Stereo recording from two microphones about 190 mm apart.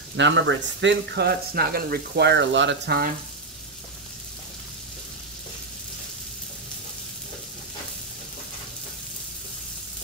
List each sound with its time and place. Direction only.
0.1 s speech: 70° right (ahead or behind)